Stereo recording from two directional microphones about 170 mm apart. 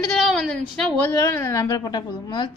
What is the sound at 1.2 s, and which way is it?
A woman's voice, 15° left (ahead or behind).